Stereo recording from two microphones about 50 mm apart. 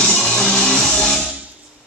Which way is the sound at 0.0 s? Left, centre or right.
Centre.